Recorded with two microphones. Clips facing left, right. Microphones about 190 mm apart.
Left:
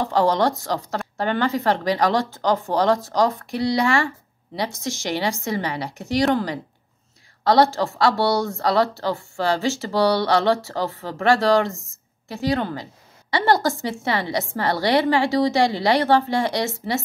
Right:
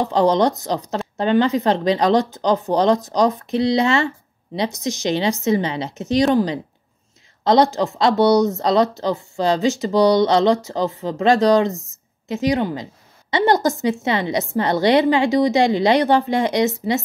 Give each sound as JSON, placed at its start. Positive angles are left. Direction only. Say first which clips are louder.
{"t": 0.0, "sound": "speech", "louder": "right 3 dB", "side_deg": -20}